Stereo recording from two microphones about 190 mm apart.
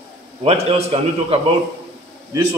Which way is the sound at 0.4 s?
30° right (ahead or behind).